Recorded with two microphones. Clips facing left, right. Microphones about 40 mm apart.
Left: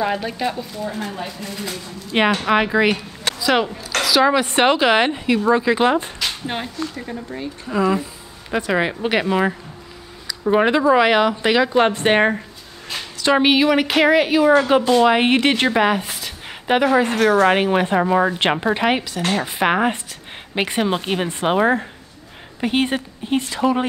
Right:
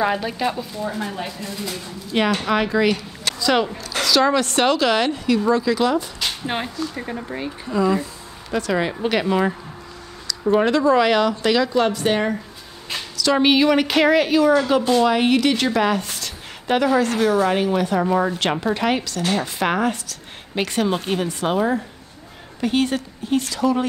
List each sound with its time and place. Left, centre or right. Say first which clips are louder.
0.0 s a woman's voice: right 1 dB; centre
1.5 s a woman's voice: even; centre; by 6.0 s left
6.4 s speech: right 1 dB; centre
7.7 s a woman's voice: left 1 dB; centre; by 12.4 s left
13.1 s a sound: left 2 dB; left
13.4 s a woman's voice: right 1 dB; centre
17.2 s speech: left 3 dB; left
18.0 s a woman's voice: left 2 dB; left
22.6 s a woman's voice: left 1 dB; left